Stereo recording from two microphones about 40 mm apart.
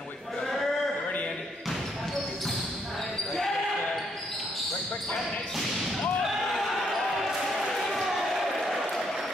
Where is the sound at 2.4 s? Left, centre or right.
Centre.